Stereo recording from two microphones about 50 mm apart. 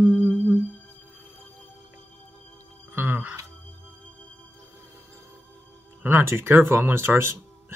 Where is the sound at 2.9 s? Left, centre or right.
Right.